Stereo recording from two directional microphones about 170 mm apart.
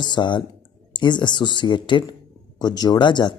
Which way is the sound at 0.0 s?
25° left (ahead or behind).